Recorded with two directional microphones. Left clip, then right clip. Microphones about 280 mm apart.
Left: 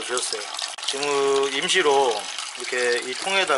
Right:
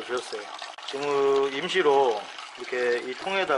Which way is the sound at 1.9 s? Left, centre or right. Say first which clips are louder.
Even; right.